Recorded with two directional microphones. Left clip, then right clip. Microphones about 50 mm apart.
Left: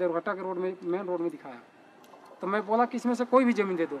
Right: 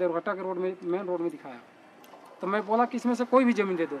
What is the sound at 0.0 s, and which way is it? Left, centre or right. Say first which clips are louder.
Speech: right 1 dB; centre.